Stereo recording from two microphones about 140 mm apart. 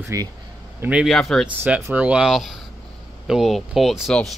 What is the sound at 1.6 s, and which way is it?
Speech, 15° right (ahead or behind).